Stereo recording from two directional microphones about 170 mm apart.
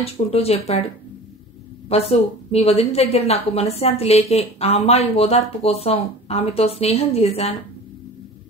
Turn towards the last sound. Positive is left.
turn(degrees=35)  # may be behind; listen again after turning